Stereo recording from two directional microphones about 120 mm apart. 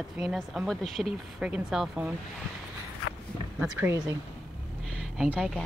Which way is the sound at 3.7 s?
20° right (ahead or behind).